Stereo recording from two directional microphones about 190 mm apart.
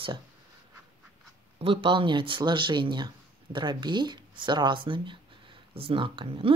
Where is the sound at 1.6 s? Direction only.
30° right (ahead or behind).